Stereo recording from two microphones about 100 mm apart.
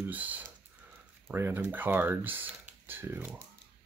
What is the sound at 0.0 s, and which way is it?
Speech, 15° right (ahead or behind).